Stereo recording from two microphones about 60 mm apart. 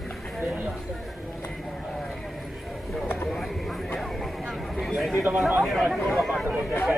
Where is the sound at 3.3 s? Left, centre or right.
Centre.